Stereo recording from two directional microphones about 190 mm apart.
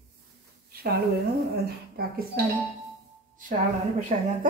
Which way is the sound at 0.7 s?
55° right (ahead or behind).